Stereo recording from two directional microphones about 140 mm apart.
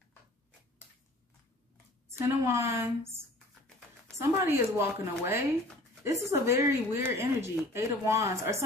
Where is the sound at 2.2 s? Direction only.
20° right (ahead or behind).